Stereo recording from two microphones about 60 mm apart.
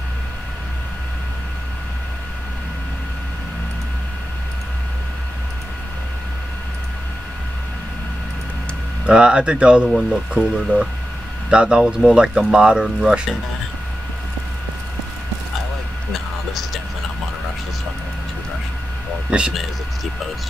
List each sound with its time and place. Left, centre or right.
9.0 s speech: centre
16.1 s a sound: centre
19.3 s speech: centre